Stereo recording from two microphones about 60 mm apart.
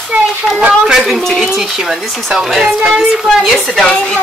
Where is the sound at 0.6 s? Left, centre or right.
Centre.